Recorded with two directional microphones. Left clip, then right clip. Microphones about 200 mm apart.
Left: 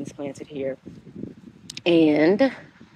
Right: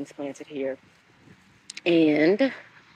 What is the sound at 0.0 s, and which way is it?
Speech, 5° left (ahead or behind).